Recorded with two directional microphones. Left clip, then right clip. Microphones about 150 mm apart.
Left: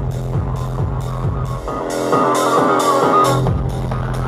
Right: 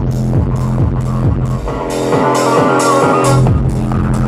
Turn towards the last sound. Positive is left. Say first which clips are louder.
# right 2 dB
turn(degrees=-25)  # may be behind; listen again after turning